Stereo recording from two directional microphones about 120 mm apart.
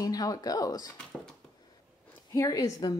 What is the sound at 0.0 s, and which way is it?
Speech, 30° left (ahead or behind).